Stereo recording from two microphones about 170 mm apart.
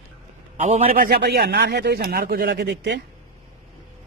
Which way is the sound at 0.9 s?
65° right (ahead or behind).